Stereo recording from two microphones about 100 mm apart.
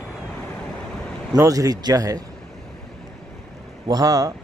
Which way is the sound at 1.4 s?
35° right (ahead or behind).